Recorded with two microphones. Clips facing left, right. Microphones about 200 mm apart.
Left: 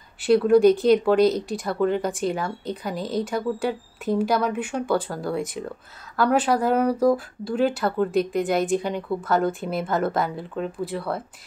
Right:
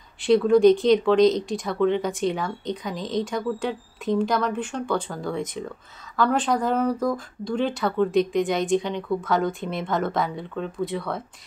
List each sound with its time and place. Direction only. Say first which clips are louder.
0.2 s speech: even; 5° left (ahead or behind)